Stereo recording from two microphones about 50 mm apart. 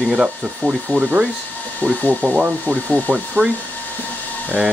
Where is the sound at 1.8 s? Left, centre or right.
Left.